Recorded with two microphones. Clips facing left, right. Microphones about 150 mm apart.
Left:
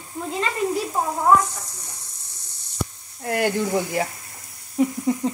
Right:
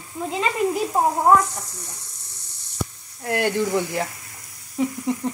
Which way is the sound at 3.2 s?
Centre (ahead or behind).